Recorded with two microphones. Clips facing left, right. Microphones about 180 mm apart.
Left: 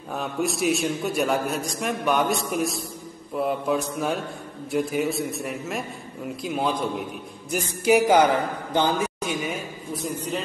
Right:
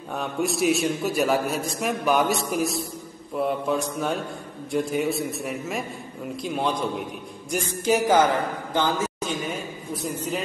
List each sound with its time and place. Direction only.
0.1 s a man's voice: centre (ahead or behind)
10.0 s a man's voice: 5° right (ahead or behind)